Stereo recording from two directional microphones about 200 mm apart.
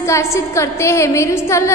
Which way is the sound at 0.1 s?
15° left (ahead or behind).